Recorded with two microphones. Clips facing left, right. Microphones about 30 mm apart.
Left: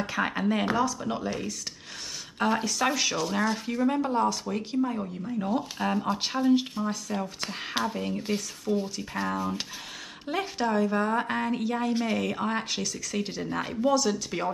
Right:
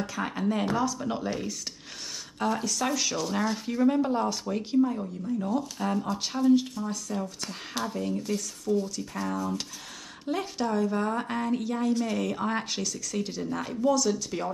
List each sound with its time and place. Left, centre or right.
0.0 s speech: left
0.7 s speech: centre
2.3 s speech: left
4.8 s speech: left
10.2 s speech: centre
12.2 s speech: centre
12.5 s speech: centre
12.9 s speech: centre